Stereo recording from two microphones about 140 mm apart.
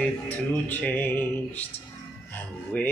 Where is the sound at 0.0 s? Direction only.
15° left (ahead or behind).